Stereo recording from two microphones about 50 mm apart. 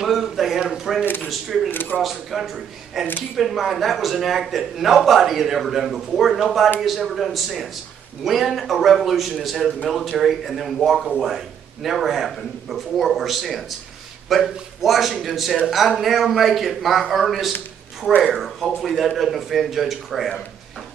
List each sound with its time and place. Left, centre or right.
0.0 s a man's voice: centre
1.7 s speech: left
2.0 s a man's voice: centre